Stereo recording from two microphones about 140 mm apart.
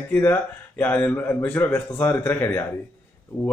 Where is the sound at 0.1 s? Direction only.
15° left (ahead or behind).